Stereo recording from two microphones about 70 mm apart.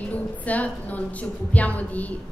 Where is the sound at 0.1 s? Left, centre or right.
Left.